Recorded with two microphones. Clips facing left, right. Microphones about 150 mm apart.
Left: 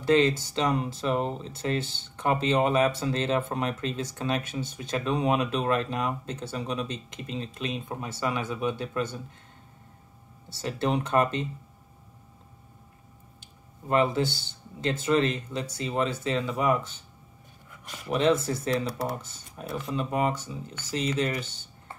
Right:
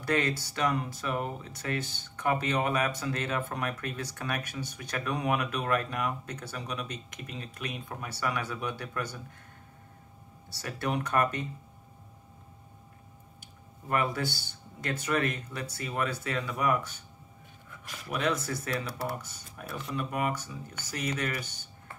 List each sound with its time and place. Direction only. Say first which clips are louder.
0.0 s speech: left 7 dB; 25° left (ahead or behind)
10.5 s speech: left 5 dB; 25° left (ahead or behind)
13.8 s speech: left 6 dB; 25° left (ahead or behind)
18.1 s speech: left 7 dB; 30° left (ahead or behind)